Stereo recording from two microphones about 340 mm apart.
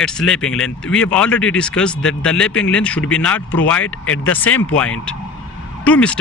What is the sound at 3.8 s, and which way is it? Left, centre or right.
Speech, left.